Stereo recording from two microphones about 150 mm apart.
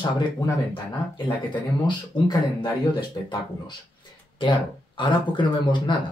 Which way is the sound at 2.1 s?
30° left (ahead or behind).